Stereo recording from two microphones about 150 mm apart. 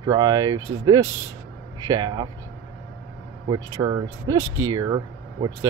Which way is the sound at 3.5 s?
30° right (ahead or behind).